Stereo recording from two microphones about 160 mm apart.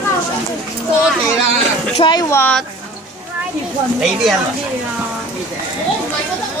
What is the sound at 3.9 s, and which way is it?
Speech, 5° right (ahead or behind).